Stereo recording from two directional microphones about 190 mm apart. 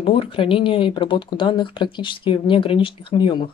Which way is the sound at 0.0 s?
30° left (ahead or behind).